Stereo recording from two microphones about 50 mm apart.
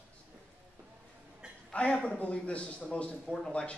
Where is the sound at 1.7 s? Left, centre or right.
Centre.